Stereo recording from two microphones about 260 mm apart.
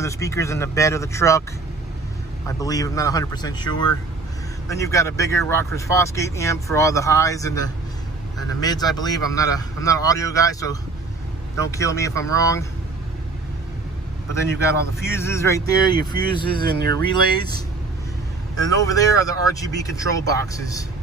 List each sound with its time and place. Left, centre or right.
0.0 s a man's voice: centre
2.4 s a man's voice: centre
14.3 s a man's voice: centre
16.5 s speech: right
16.9 s a man's voice: centre
18.6 s a man's voice: centre